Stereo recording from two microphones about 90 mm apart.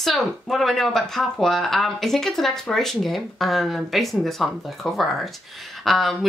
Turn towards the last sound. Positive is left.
turn(degrees=0)  # may be behind; listen again after turning